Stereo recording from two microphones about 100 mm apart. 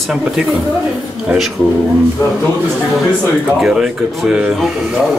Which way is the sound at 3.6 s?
5° right (ahead or behind).